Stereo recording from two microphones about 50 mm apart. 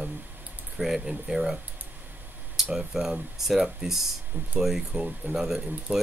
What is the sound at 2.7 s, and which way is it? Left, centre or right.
Speech, centre.